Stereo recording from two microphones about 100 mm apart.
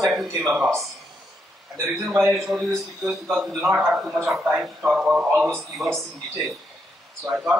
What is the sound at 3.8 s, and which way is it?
Speech, centre (ahead or behind).